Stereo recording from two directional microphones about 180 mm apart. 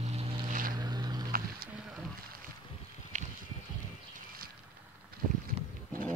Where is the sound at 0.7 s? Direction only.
25° right (ahead or behind).